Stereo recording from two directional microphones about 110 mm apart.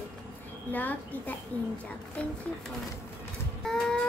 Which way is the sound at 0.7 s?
15° left (ahead or behind).